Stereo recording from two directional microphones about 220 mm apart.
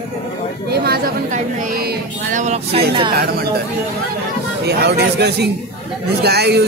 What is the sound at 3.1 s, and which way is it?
Speech, 45° right (ahead or behind).